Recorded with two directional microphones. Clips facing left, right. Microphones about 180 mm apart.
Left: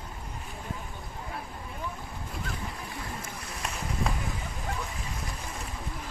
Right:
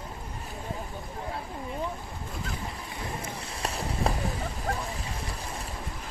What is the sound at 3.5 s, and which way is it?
Run, 30° right (ahead or behind).